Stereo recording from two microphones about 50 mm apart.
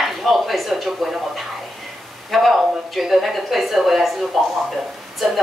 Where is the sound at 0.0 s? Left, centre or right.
Centre.